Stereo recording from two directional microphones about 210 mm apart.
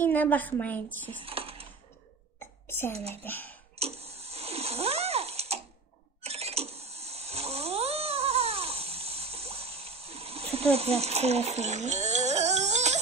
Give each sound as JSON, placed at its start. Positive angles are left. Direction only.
{"t": 0.0, "sound": "a woman's voice", "side_deg": 10}
{"t": 1.2, "sound": "typing", "side_deg": -25}
{"t": 2.9, "sound": "speech", "side_deg": -30}
{"t": 3.3, "sound": "a woman's voice", "side_deg": 10}
{"t": 3.7, "sound": "a sound", "side_deg": -30}